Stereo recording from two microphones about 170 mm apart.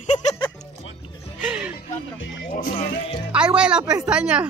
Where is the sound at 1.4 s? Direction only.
10° right (ahead or behind).